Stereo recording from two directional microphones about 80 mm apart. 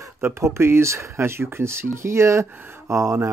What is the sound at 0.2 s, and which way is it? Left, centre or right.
Speech, right.